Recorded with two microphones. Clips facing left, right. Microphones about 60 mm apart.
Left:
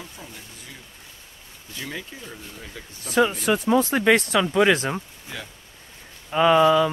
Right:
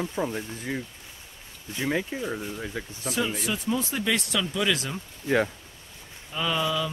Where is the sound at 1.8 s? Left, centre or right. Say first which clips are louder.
Right 7 dB; right.